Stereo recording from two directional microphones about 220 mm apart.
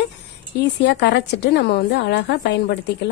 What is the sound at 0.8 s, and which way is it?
A woman's voice, 50° left (ahead or behind).